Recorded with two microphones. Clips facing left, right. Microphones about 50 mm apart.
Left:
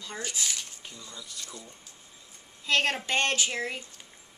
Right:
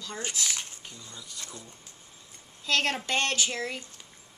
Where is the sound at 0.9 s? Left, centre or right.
Right.